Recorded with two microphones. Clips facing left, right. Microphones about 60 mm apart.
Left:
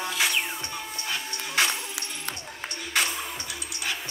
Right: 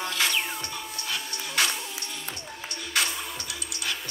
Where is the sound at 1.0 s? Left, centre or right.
Left.